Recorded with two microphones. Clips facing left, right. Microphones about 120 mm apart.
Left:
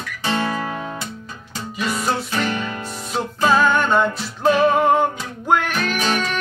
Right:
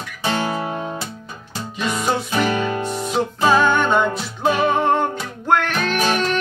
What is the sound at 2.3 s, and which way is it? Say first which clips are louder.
Music: right 3 dB; 10° right (ahead or behind).